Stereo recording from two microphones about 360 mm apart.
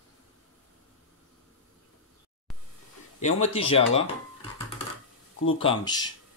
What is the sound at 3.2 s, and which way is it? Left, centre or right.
Speech, centre.